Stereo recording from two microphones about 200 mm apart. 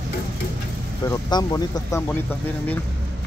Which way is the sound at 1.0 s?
15° left (ahead or behind).